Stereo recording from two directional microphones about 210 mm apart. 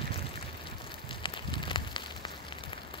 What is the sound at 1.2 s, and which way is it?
Fire, 25° left (ahead or behind).